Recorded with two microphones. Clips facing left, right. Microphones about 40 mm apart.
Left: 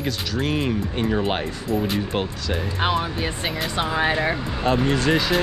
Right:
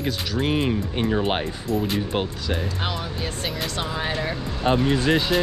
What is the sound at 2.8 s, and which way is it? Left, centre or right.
Speech, left.